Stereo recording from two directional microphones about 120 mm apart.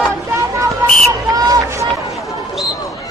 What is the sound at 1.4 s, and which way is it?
Run, 30° right (ahead or behind).